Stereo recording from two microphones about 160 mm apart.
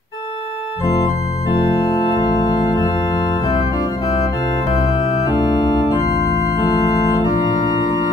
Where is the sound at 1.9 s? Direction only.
25° left (ahead or behind).